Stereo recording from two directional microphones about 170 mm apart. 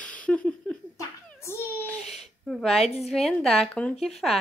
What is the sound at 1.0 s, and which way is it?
A child's voice, 15° left (ahead or behind).